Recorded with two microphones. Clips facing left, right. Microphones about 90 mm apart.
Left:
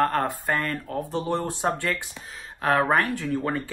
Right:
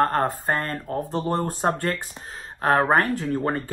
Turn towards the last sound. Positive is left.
turn(degrees=-35)  # may be behind; listen again after turning